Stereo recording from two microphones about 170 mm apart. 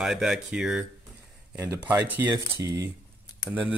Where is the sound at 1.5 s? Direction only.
15° right (ahead or behind).